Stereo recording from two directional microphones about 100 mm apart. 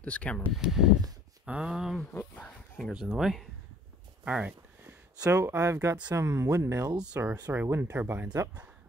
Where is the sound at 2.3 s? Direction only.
15° left (ahead or behind).